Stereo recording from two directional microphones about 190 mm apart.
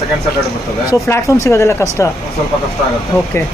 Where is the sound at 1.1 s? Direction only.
15° left (ahead or behind).